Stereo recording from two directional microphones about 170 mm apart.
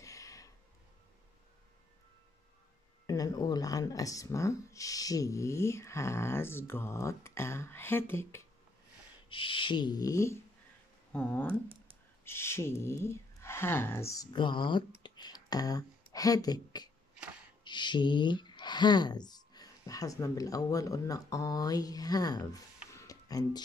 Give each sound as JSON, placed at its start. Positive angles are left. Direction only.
{"t": 0.0, "sound": "a sound", "side_deg": 20}
{"t": 3.1, "sound": "speech", "side_deg": 20}
{"t": 9.3, "sound": "speech", "side_deg": 30}